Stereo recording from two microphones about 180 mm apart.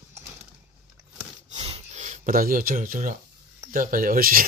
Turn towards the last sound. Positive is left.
turn(degrees=-50)  # may be behind; listen again after turning